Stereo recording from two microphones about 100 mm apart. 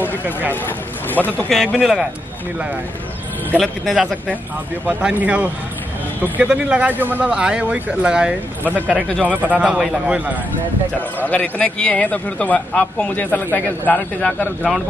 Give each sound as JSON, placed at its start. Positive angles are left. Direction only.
{"t": 1.1, "sound": "a man's voice", "side_deg": 15}
{"t": 1.5, "sound": "speech", "side_deg": 0}
{"t": 3.5, "sound": "speech", "side_deg": 5}
{"t": 4.8, "sound": "speech", "side_deg": -10}
{"t": 11.2, "sound": "a man's voice", "side_deg": 15}